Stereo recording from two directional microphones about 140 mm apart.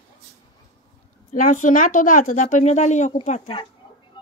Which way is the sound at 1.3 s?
65° left (ahead or behind).